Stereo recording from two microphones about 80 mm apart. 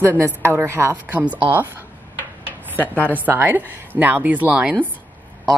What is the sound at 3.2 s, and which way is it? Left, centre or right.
Speech, right.